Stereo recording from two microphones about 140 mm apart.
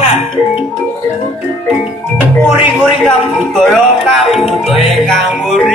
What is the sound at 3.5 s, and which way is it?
Music, centre (ahead or behind).